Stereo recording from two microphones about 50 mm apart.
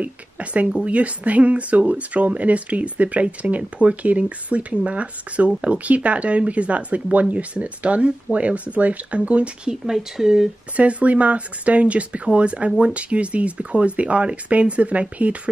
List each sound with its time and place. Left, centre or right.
0.0 s speech: right
9.8 s speech: centre
10.8 s speech: right